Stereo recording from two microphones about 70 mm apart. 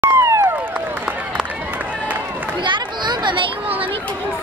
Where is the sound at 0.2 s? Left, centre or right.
Right.